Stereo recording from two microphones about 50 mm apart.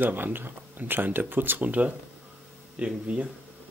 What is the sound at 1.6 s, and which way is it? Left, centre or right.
Speech, right.